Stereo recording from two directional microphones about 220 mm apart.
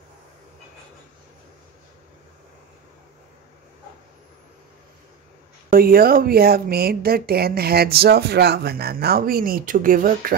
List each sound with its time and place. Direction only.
5.7 s speech: 40° right (ahead or behind)